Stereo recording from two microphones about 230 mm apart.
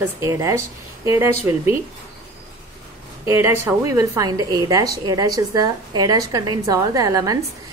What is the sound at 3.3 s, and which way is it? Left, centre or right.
A woman's voice, centre.